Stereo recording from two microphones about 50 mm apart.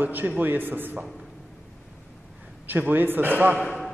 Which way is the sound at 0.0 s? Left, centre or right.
Right.